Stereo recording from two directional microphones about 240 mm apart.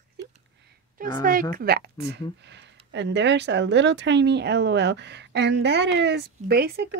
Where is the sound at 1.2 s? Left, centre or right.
Right.